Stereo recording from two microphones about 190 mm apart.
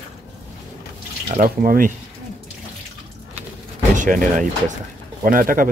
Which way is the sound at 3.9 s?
45° right (ahead or behind).